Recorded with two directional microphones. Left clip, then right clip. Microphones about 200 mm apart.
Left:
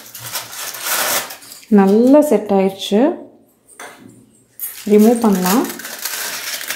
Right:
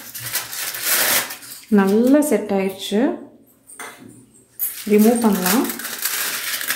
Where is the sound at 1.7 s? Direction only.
25° left (ahead or behind).